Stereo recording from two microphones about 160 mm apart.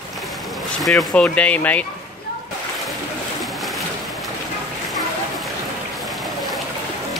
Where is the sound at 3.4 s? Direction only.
Centre (ahead or behind).